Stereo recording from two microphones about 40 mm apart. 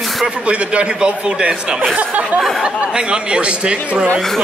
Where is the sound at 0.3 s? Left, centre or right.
Right.